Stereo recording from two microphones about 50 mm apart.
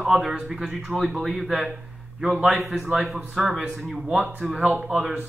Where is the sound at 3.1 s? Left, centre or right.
Centre.